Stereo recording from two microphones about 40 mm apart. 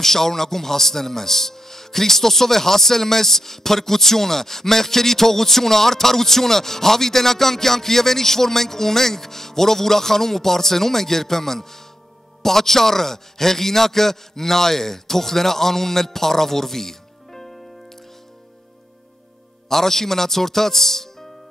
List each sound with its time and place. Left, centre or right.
0.0 s a man's voice: centre
19.7 s a man's voice: centre